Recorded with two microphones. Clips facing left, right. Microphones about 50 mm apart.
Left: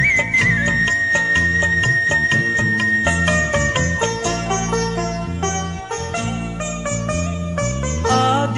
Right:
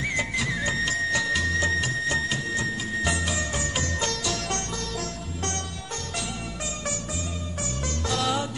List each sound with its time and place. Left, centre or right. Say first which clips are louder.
0.3 s music: left 11 dB; left
3.3 s music: left 11 dB; left
8.1 s music: left 10 dB; left